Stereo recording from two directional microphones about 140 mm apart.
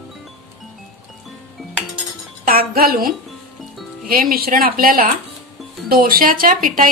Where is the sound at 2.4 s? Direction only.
90° right.